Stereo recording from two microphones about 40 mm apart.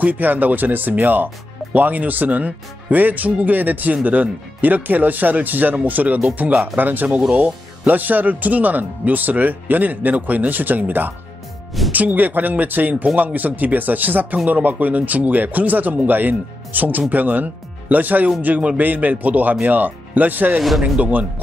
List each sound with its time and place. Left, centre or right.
0.0 s speech: right
6.5 s speech: centre
6.8 s speech: right
7.1 s speech: right
20.6 s speech: centre
21.0 s speech: right